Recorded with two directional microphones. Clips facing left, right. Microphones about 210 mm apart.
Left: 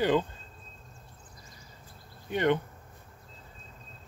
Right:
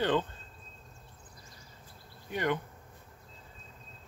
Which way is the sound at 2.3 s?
25° left (ahead or behind).